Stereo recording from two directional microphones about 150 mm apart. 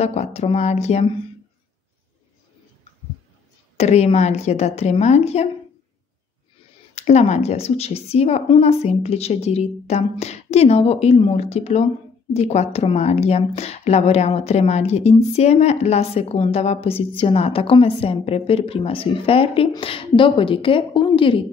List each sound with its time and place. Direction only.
0.0 s a woman's voice: 45° left (ahead or behind)
3.7 s a woman's voice: 45° left (ahead or behind)
7.0 s a woman's voice: 45° left (ahead or behind)